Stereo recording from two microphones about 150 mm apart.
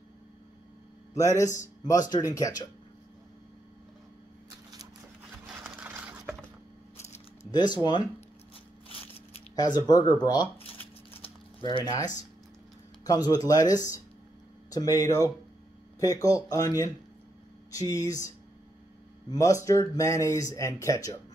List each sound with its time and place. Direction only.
1.1 s speech: 20° left (ahead or behind)
5.6 s vehicle: 10° right (ahead or behind)
7.5 s speech: 30° left (ahead or behind)
9.6 s speech: 25° left (ahead or behind)
11.2 s a sound: 35° left (ahead or behind)
13.0 s speech: 25° left (ahead or behind)
19.3 s speech: 20° left (ahead or behind)